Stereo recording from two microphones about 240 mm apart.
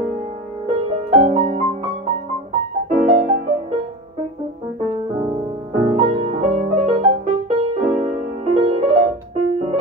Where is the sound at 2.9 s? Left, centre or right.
Right.